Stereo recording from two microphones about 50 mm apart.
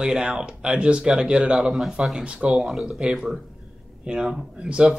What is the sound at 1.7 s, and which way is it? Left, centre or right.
Speech, centre.